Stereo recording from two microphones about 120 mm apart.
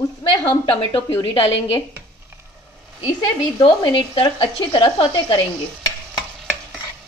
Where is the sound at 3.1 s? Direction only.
45° left (ahead or behind).